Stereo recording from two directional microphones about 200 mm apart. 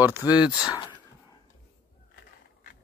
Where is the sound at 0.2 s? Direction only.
15° left (ahead or behind).